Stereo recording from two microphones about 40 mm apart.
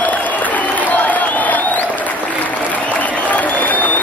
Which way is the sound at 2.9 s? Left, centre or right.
Left.